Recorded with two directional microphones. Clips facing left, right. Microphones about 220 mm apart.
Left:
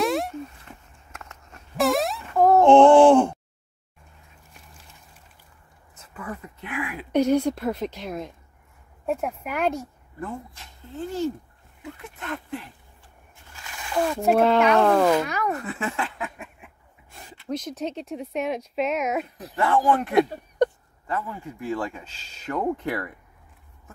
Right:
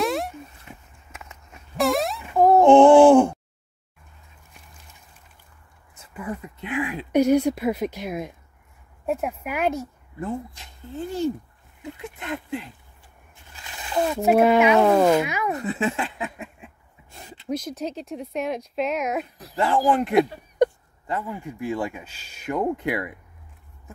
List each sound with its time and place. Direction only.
0.0 s a sound: centre (ahead or behind)
2.2 s groan: 10° right (ahead or behind)
6.1 s a sound: 15° right (ahead or behind)
7.1 s speech: 10° right (ahead or behind)
10.2 s speech: 15° right (ahead or behind)
13.6 s a sound: 25° right (ahead or behind)
14.0 s speech: 5° right (ahead or behind)
15.5 s speech: 20° right (ahead or behind)
17.6 s speech: centre (ahead or behind)
19.5 s speech: 30° right (ahead or behind)